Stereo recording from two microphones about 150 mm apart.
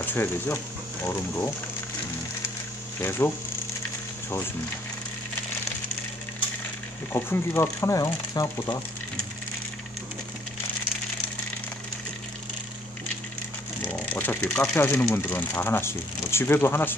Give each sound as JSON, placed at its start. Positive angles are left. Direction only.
{"t": 0.0, "sound": "speech", "side_deg": 15}
{"t": 3.0, "sound": "speech", "side_deg": 15}
{"t": 7.1, "sound": "speech", "side_deg": 15}
{"t": 13.8, "sound": "speech", "side_deg": 10}